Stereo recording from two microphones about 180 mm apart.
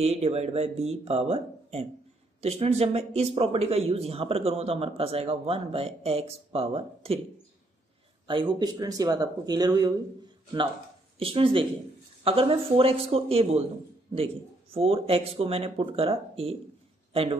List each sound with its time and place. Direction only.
0.0 s speech: 35° right (ahead or behind)
8.3 s speech: 25° right (ahead or behind)
11.1 s a man's voice: 30° right (ahead or behind)